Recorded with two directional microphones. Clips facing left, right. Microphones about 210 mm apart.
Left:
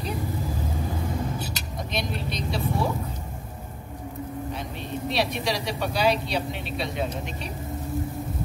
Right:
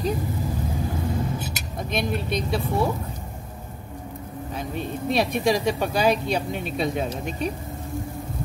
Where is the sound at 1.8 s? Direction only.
50° right (ahead or behind).